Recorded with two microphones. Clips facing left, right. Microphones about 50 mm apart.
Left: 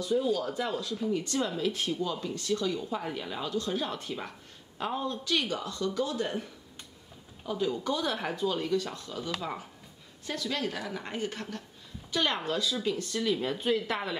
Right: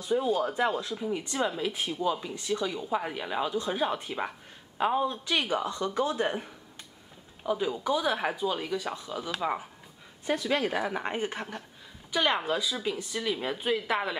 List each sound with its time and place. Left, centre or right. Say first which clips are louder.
0.0 s speech: right 1 dB; right
7.4 s speech: right 2 dB; centre
10.2 s speech: right 5 dB; right; by 14.1 s centre